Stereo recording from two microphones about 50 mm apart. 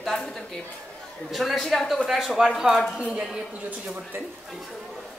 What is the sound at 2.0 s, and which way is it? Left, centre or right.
Speech, centre.